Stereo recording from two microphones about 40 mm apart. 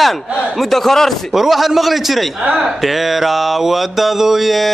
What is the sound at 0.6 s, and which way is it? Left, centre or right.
Speech, centre.